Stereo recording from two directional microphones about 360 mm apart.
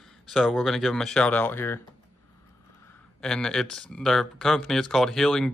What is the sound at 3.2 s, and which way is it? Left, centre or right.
Speech, centre.